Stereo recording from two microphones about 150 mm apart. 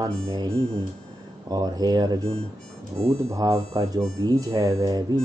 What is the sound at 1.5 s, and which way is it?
Speech, 25° right (ahead or behind).